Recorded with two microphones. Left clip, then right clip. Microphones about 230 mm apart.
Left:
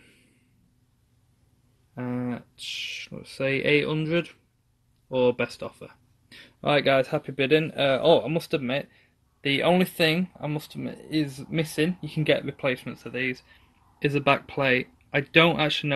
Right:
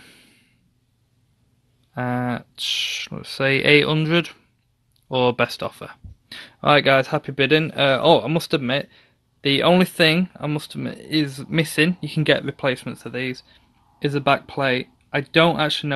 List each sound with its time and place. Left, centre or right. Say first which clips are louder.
2.0 s speech: right 8 dB; right; by 15.9 s centre